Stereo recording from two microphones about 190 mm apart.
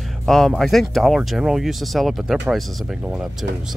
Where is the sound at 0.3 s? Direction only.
Centre (ahead or behind).